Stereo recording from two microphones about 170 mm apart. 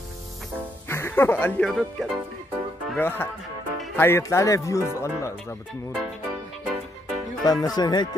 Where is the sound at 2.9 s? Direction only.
15° left (ahead or behind).